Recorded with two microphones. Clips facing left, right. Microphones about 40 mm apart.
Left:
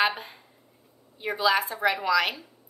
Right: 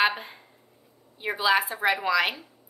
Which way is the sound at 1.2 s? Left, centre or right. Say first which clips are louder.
Right 1 dB; centre.